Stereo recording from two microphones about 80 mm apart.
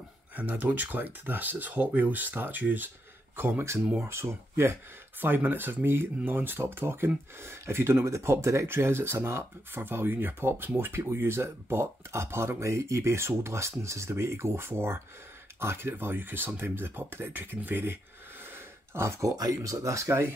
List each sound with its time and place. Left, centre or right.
0.4 s speech: right
18.4 s a sound: right
19.3 s speech: right